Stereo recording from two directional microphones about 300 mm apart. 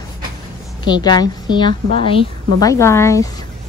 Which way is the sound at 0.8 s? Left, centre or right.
Centre.